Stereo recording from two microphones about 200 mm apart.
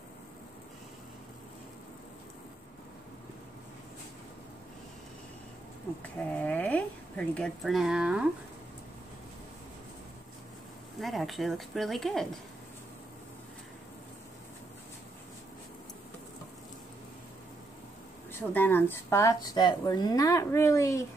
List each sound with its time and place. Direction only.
6.3 s speech: 10° left (ahead or behind)
11.0 s speech: centre (ahead or behind)
18.5 s a woman's voice: 10° left (ahead or behind)